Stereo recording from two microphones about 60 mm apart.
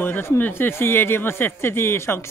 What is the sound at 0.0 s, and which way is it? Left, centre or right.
Speech, left.